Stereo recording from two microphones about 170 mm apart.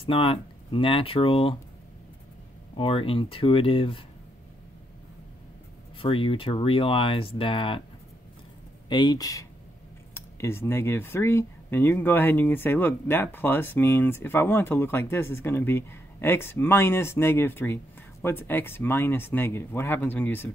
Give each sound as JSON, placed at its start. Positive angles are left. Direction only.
{"t": 0.1, "sound": "speech", "side_deg": 30}
{"t": 2.7, "sound": "speech", "side_deg": 30}
{"t": 5.9, "sound": "speech", "side_deg": 30}
{"t": 8.8, "sound": "speech", "side_deg": 25}